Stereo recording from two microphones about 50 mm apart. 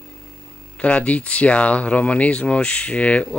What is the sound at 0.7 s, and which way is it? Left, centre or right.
Speech, left.